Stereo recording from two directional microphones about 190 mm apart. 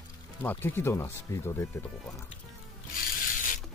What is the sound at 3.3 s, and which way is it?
Mechanisms, 45° left (ahead or behind).